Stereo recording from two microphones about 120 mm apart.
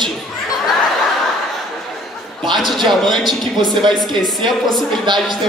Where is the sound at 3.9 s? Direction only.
Centre (ahead or behind).